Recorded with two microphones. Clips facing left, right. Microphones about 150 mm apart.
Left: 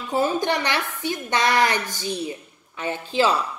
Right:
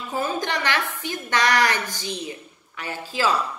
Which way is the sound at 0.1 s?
20° left (ahead or behind).